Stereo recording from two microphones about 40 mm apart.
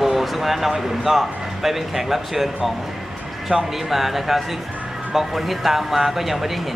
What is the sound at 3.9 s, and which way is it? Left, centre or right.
Speech, centre.